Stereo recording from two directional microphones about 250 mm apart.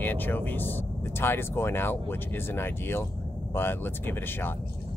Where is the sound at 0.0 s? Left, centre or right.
Centre.